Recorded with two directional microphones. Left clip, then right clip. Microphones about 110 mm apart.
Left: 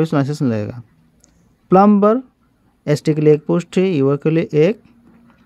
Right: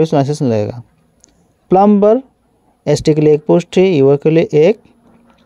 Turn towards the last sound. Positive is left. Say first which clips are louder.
# right 5 dB
turn(degrees=-30)  # may be behind; listen again after turning